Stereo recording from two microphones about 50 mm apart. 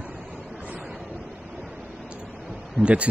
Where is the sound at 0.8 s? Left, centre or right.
Centre.